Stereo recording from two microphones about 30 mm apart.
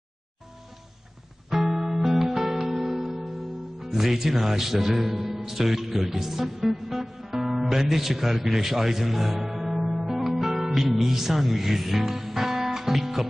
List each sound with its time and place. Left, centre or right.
1.5 s music: centre
3.8 s speech: centre
10.4 s music: centre